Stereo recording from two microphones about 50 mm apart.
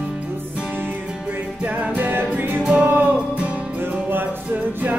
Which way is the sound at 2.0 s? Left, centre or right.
Right.